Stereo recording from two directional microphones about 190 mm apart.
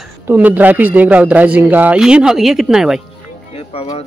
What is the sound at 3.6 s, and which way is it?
Speech, 30° left (ahead or behind).